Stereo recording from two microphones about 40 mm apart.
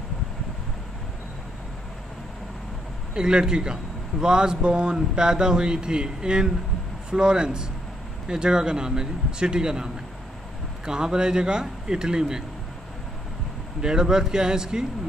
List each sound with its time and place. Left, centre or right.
3.2 s a man's voice: right
10.9 s a man's voice: centre
13.7 s a man's voice: centre